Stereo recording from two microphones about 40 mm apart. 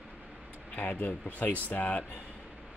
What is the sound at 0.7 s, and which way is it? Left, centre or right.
Speech, left.